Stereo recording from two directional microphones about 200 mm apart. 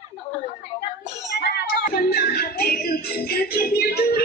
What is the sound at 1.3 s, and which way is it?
Music, 55° left (ahead or behind).